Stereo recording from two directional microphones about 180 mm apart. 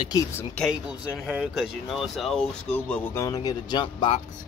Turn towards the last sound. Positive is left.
turn(degrees=25)  # may be behind; listen again after turning